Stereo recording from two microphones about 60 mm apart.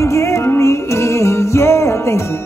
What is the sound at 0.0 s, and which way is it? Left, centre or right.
Music, left.